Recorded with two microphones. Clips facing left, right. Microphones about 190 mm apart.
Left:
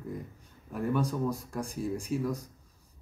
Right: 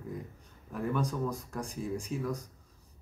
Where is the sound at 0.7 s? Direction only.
10° left (ahead or behind).